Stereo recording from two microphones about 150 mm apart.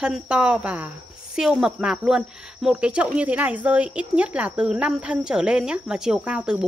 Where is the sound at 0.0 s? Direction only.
5° right (ahead or behind).